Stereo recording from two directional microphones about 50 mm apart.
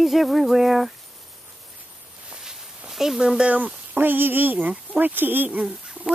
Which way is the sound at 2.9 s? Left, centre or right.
Centre.